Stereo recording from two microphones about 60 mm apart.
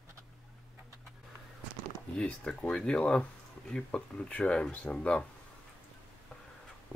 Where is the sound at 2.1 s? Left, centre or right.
Centre.